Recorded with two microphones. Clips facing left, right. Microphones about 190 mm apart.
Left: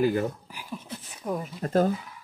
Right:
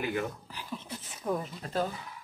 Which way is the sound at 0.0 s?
35° left (ahead or behind).